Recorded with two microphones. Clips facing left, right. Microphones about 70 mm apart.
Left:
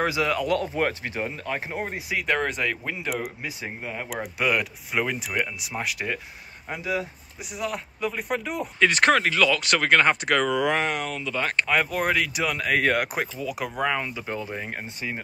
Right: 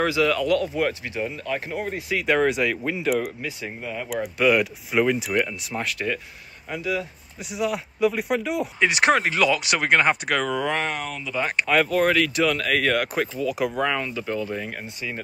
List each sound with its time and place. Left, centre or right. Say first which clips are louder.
0.0 s speech: right 3 dB; left
2.1 s speech: right 5 dB; centre
3.4 s speech: right 2 dB; left
4.5 s speech: right 6 dB; centre; by 7.1 s left
7.5 s speech: right 5 dB; centre
10.2 s speech: left 2 dB; centre
11.3 s speech: right 1 dB; centre
11.6 s speech: right 5 dB; centre
13.6 s speech: right 1 dB; centre; by 15.1 s left